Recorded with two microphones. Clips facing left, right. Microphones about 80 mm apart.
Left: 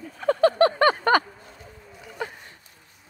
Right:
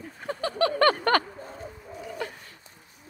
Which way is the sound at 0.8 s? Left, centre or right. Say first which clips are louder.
Left 2 dB; centre.